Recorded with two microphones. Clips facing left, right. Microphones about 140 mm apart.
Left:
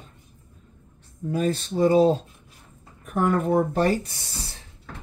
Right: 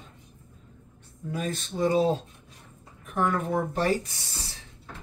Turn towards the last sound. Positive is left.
turn(degrees=35)  # may be behind; listen again after turning